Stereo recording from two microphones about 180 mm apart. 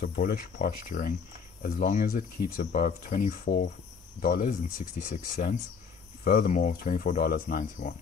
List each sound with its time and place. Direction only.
0.0 s speech: 55° left (ahead or behind)